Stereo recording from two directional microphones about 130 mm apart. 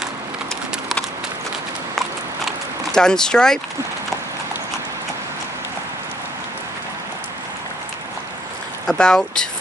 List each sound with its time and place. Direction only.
2.9 s speech: 5° left (ahead or behind)
8.8 s speech: 5° left (ahead or behind)